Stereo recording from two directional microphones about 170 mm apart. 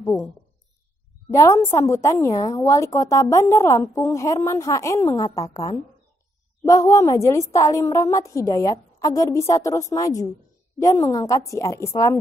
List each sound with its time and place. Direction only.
0.0 s a woman's voice: 15° left (ahead or behind)
1.3 s a woman's voice: 15° left (ahead or behind)